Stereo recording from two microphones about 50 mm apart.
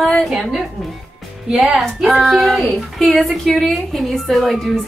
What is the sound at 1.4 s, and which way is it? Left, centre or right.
Speech, centre.